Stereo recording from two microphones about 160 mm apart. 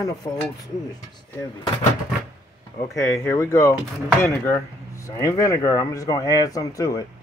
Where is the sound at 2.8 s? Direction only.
20° left (ahead or behind).